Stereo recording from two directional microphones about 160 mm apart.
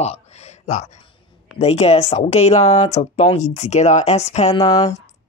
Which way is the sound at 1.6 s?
40° left (ahead or behind).